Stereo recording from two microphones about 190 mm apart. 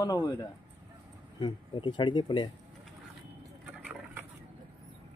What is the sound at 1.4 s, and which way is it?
Speech, 25° left (ahead or behind).